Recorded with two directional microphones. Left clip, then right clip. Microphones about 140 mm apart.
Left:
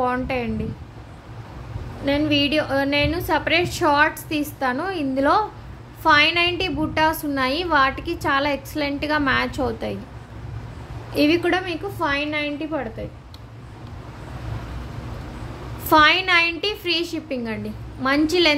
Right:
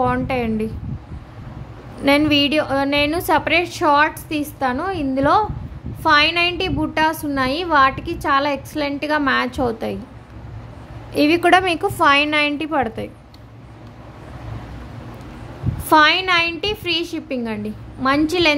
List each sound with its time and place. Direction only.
0.0 s a woman's voice: 20° right (ahead or behind)
2.0 s a woman's voice: 45° right (ahead or behind)
2.4 s a woman's voice: 25° right (ahead or behind)
11.1 s a woman's voice: 25° right (ahead or behind)
11.4 s a woman's voice: 50° right (ahead or behind)
15.9 s a woman's voice: 20° right (ahead or behind)